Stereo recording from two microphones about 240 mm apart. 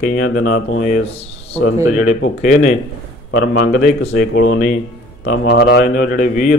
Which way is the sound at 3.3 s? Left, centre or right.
Left.